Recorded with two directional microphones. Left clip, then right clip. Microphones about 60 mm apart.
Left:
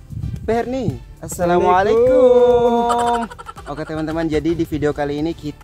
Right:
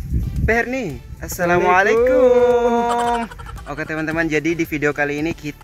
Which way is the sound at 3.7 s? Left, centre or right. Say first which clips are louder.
Right 1 dB; centre.